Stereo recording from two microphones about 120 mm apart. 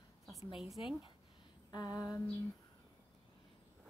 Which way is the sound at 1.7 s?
30° left (ahead or behind).